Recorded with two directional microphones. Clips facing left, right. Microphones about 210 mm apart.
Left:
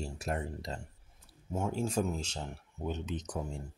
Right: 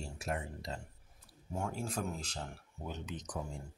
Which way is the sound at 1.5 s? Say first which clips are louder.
Left 5 dB; 20° left (ahead or behind).